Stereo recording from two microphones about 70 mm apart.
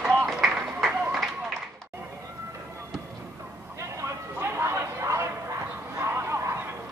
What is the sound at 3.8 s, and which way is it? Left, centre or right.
Bow-wow, right.